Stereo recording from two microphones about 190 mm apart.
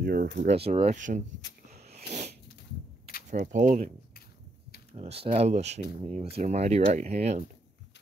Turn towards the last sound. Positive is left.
turn(degrees=-35)  # may be behind; listen again after turning